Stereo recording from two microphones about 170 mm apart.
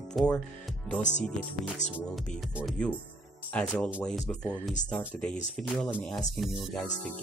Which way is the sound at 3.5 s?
5° left (ahead or behind).